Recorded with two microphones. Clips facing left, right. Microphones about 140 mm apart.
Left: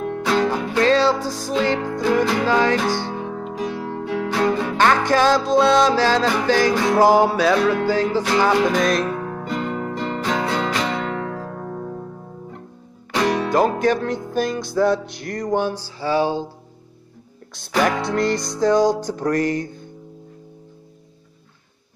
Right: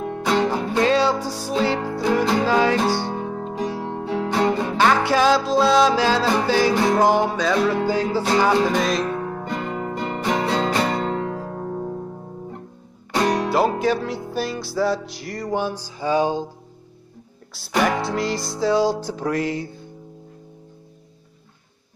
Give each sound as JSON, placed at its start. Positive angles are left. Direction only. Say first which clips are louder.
{"t": 0.0, "sound": "music", "louder": "left 1 dB", "side_deg": -15}
{"t": 3.1, "sound": "music", "louder": "even", "side_deg": -35}
{"t": 4.7, "sound": "music", "louder": "left 1 dB", "side_deg": -10}
{"t": 7.0, "sound": "music", "louder": "left 3 dB", "side_deg": 10}
{"t": 7.5, "sound": "music", "louder": "left 2 dB", "side_deg": -10}
{"t": 8.7, "sound": "music", "louder": "left 2 dB", "side_deg": 0}
{"t": 9.7, "sound": "guitar", "louder": "left 1 dB", "side_deg": -10}
{"t": 10.5, "sound": "music", "louder": "right 1 dB", "side_deg": -35}
{"t": 13.1, "sound": "music", "louder": "left 1 dB", "side_deg": -15}
{"t": 17.6, "sound": "music", "louder": "left 1 dB", "side_deg": -5}